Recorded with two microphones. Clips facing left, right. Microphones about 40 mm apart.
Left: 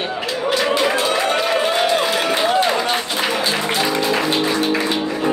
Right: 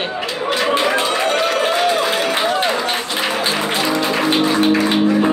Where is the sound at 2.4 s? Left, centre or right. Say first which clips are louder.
Left 1 dB; centre.